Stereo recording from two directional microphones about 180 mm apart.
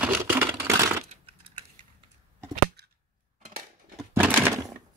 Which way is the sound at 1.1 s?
30° right (ahead or behind).